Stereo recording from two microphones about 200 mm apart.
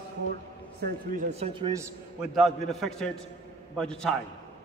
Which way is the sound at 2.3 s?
Centre (ahead or behind).